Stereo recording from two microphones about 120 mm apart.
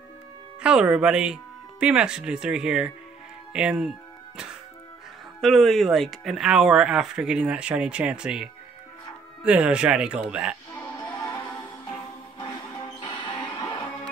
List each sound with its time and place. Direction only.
0.6 s speech: 10° right (ahead or behind)
5.4 s speech: centre (ahead or behind)
10.7 s music: 15° left (ahead or behind)
13.2 s music: 40° left (ahead or behind)